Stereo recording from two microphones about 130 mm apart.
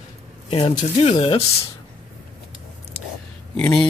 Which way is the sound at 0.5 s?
45° left (ahead or behind).